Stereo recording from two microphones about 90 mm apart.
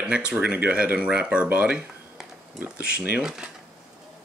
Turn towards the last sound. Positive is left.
turn(degrees=-5)  # may be behind; listen again after turning